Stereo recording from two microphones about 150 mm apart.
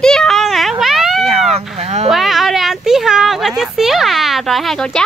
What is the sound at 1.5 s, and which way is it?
Speech, 45° right (ahead or behind).